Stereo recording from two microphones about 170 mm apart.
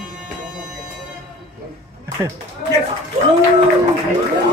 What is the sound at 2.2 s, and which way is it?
Speech, 15° right (ahead or behind).